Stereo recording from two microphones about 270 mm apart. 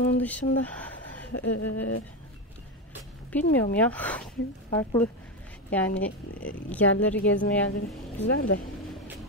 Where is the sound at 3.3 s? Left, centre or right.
Centre.